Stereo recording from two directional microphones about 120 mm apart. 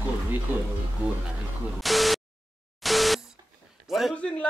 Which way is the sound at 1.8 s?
Centre (ahead or behind).